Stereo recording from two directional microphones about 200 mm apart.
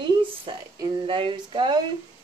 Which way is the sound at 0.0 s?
25° right (ahead or behind).